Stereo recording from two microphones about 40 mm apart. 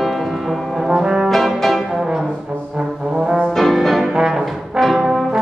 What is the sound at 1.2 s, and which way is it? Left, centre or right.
Brass instrument, centre.